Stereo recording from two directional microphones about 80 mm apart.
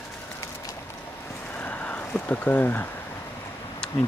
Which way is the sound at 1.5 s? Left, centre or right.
Centre.